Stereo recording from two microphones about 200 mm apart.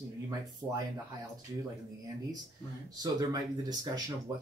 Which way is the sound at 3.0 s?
20° right (ahead or behind).